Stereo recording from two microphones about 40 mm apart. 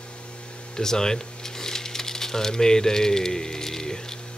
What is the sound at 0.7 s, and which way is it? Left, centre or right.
Typewriter, centre.